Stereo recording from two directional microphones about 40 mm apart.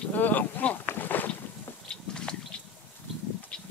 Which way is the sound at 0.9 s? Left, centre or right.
Left.